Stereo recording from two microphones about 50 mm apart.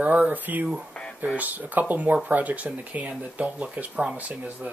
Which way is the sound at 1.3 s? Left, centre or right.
Right.